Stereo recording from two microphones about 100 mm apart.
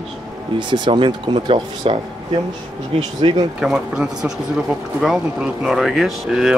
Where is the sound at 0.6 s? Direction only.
50° right (ahead or behind).